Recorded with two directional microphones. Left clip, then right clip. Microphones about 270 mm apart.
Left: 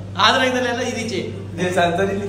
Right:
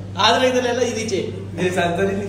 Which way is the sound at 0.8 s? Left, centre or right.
Right.